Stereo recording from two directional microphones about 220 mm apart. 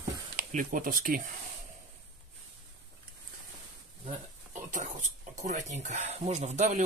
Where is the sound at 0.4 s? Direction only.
40° right (ahead or behind).